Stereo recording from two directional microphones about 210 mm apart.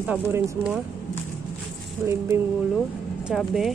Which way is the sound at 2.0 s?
15° right (ahead or behind).